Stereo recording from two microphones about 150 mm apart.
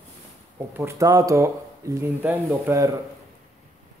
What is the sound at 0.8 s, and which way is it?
Speech, 20° right (ahead or behind).